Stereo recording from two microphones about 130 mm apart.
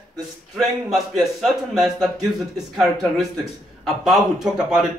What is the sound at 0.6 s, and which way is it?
A man's voice, centre (ahead or behind).